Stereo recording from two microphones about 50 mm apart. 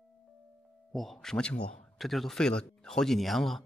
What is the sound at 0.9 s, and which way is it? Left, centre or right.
Speech, centre.